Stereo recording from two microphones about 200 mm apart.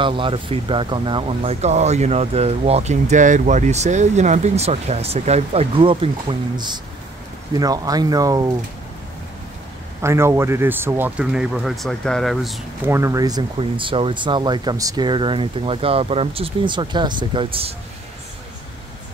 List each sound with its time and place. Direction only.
0.0 s speech: 25° right (ahead or behind)
10.0 s speech: 15° right (ahead or behind)
12.8 s speech: 15° right (ahead or behind)